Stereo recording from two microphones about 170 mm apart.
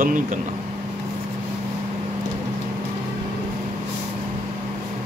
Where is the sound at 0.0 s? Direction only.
50° right (ahead or behind).